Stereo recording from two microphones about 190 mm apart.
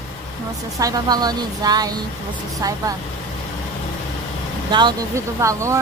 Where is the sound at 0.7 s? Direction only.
20° right (ahead or behind).